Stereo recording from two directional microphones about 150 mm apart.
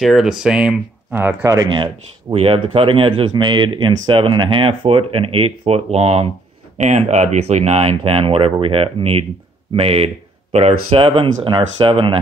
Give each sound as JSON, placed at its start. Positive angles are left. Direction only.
{"t": 0.0, "sound": "speech", "side_deg": 0}
{"t": 1.7, "sound": "speech", "side_deg": -35}